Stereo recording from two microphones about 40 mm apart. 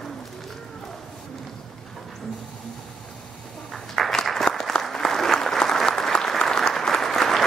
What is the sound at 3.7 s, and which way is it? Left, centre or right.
Applause, centre.